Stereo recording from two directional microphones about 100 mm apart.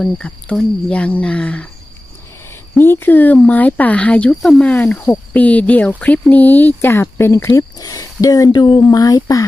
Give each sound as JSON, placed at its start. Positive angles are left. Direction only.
{"t": 0.0, "sound": "speech", "side_deg": 10}
{"t": 2.8, "sound": "speech", "side_deg": 20}
{"t": 8.5, "sound": "speech", "side_deg": 50}
{"t": 8.8, "sound": "speech", "side_deg": 35}